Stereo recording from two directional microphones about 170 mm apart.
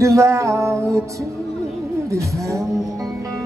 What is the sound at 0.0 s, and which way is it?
Music, 15° right (ahead or behind).